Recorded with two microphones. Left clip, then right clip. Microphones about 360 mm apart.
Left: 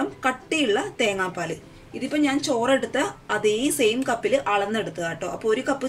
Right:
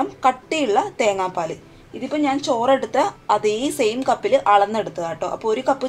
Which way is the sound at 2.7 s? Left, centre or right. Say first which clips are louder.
Right 4 dB; centre.